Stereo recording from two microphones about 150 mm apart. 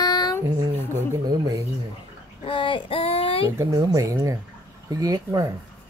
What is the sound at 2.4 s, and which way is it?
A woman's voice, 35° left (ahead or behind).